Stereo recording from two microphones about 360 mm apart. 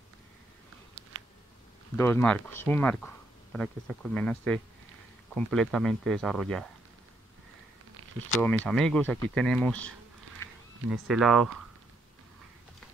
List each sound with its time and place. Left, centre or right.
1.0 s a sound: right
2.0 s speech: centre
8.6 s speech: centre